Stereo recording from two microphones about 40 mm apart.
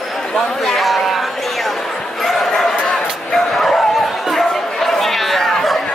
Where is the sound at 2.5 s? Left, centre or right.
Centre.